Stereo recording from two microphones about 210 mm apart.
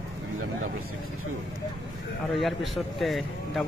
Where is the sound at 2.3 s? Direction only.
Centre (ahead or behind).